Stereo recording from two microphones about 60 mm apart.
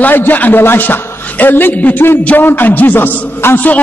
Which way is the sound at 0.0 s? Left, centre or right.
Left.